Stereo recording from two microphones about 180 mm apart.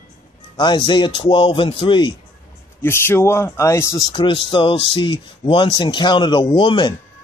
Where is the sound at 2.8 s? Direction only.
15° left (ahead or behind).